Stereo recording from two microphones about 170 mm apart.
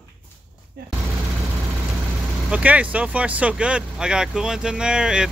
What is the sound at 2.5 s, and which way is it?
Speech, 10° right (ahead or behind).